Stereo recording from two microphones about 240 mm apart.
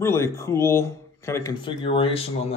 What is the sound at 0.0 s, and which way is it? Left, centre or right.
Speech, centre.